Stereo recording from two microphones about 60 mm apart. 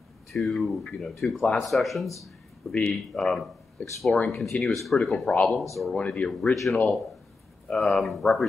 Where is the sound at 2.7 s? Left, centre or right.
Centre.